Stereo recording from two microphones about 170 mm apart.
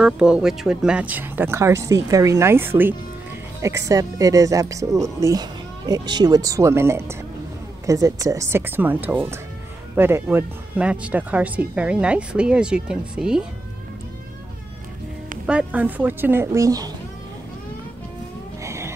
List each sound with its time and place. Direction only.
0.0 s speech: 5° right (ahead or behind)
3.9 s speech: 20° right (ahead or behind); by 13.5 s 5° right (ahead or behind)
15.4 s speech: 5° right (ahead or behind)
18.6 s livestock: 15° right (ahead or behind)